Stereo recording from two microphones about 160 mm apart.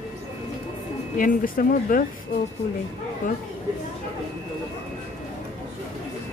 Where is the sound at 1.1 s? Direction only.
60° left (ahead or behind).